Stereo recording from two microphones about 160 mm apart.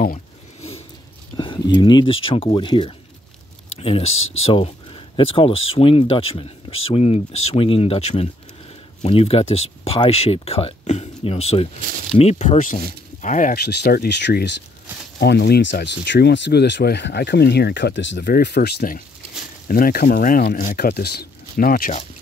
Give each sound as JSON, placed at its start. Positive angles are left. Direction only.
{"t": 0.6, "sound": "a sound", "side_deg": 40}
{"t": 1.3, "sound": "speech", "side_deg": 30}
{"t": 13.6, "sound": "speech", "side_deg": 90}